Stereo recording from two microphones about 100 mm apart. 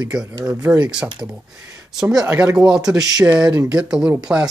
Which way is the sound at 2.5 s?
5° right (ahead or behind).